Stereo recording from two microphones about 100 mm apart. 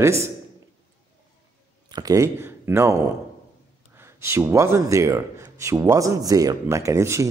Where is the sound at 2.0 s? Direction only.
35° right (ahead or behind).